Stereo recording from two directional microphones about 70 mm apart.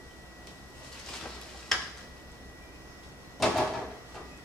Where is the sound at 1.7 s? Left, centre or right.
Centre.